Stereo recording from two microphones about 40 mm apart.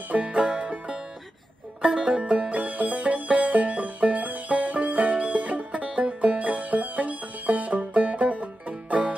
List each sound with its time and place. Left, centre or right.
0.1 s music: right